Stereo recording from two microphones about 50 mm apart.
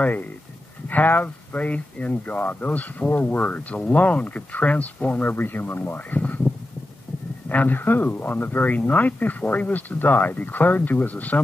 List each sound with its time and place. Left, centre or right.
0.8 s speech: left